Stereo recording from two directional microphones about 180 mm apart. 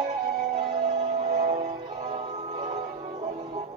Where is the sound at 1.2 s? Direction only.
40° right (ahead or behind).